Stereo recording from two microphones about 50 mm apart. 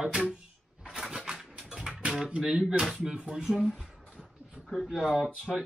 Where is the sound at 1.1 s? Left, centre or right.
Centre.